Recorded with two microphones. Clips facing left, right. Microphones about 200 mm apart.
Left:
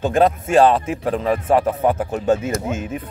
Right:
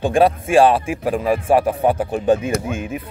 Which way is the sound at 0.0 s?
10° right (ahead or behind).